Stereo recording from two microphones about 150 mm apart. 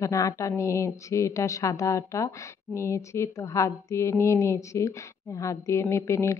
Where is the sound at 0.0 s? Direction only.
20° left (ahead or behind).